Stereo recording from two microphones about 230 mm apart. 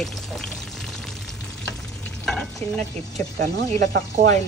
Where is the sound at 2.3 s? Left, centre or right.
Centre.